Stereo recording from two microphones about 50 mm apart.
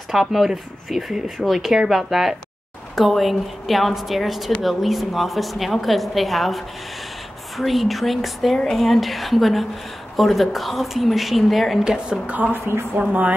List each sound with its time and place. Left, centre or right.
0.1 s a woman's voice: centre
11.8 s a woman's voice: centre
12.7 s a woman's voice: right